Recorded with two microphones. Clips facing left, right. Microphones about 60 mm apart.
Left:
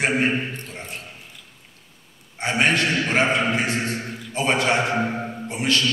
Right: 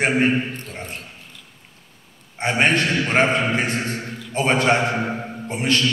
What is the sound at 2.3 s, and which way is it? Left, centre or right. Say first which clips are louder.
A man's voice: right 2 dB; right.